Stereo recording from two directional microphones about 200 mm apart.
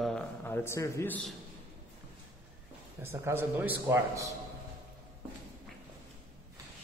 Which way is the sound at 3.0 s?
10° right (ahead or behind).